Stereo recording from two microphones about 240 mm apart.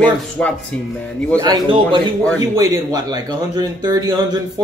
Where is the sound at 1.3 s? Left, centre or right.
Centre.